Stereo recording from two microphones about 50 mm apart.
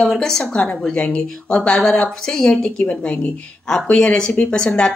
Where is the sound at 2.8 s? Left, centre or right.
Left.